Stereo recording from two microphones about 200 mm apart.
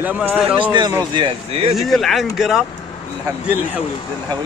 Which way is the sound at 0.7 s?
20° right (ahead or behind).